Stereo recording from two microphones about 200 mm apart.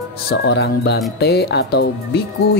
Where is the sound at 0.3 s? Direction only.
55° left (ahead or behind).